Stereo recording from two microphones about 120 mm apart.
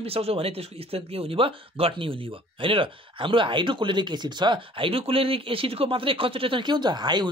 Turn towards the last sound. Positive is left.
turn(degrees=-35)  # may be behind; listen again after turning